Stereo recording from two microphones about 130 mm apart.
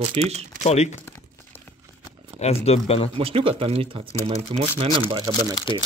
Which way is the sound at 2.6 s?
45° left (ahead or behind).